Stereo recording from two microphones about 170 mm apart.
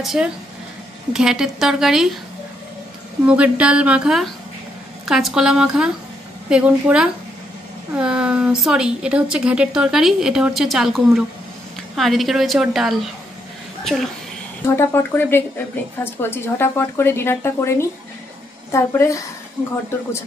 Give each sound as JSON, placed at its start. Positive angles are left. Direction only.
{"t": 0.0, "sound": "a woman's voice", "side_deg": 0}
{"t": 3.3, "sound": "a sound", "side_deg": -5}
{"t": 5.0, "sound": "a woman's voice", "side_deg": 0}
{"t": 14.8, "sound": "a woman's voice", "side_deg": 15}